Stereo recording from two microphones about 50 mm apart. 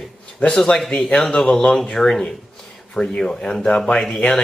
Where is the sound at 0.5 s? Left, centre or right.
Centre.